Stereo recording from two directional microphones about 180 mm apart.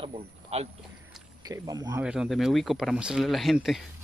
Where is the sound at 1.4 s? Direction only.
20° right (ahead or behind).